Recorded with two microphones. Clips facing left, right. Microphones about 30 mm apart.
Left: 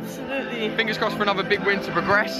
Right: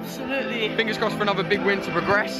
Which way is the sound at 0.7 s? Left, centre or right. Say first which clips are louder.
Left 2 dB; centre.